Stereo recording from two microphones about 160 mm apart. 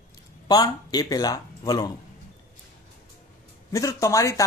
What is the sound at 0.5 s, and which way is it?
Speech, 25° left (ahead or behind).